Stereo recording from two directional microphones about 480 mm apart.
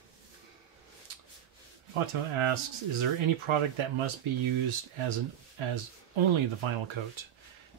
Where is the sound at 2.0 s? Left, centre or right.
Right.